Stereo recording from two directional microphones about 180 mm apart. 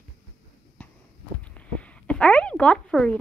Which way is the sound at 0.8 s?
10° left (ahead or behind).